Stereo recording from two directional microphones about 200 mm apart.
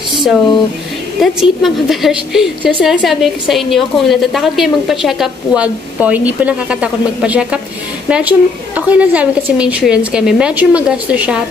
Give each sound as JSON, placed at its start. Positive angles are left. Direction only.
{"t": 1.2, "sound": "a woman's voice", "side_deg": 0}